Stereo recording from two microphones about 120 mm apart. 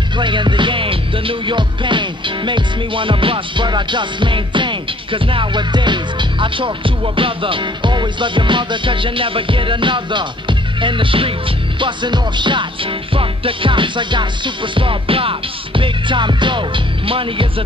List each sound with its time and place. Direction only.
0.2 s music: 40° right (ahead or behind)